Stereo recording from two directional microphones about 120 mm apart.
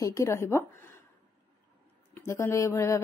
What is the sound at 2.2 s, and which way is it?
Speech, 20° left (ahead or behind).